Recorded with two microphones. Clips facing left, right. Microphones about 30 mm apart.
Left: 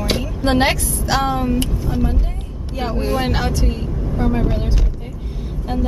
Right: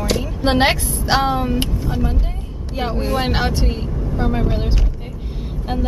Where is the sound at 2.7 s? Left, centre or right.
Centre.